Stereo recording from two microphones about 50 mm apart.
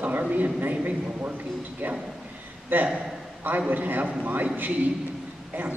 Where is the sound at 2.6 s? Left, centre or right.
Right.